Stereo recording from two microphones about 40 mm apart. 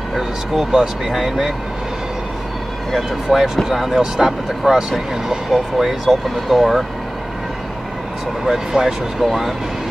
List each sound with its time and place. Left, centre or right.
0.7 s speech: centre
3.3 s speech: centre
8.5 s speech: centre